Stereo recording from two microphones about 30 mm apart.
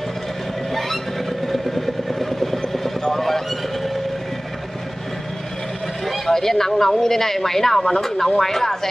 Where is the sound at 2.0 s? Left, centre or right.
Centre.